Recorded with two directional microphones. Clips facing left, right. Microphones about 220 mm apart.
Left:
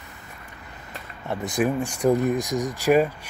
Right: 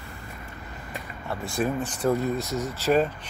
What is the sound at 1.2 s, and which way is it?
Speech, 20° left (ahead or behind).